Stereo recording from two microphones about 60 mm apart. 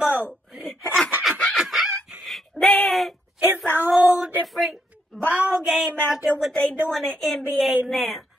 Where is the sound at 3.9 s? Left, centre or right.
Right.